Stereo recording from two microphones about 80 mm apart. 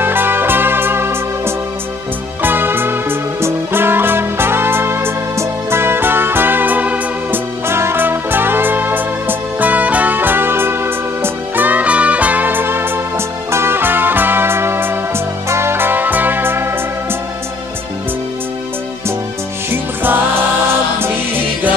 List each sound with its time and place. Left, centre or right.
0.0 s music: right
19.7 s music: right